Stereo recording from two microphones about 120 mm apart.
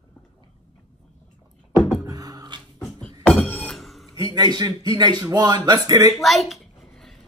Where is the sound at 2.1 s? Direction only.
30° right (ahead or behind).